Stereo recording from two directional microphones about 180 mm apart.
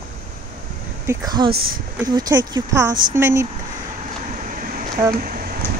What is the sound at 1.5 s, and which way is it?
Speech, 55° right (ahead or behind).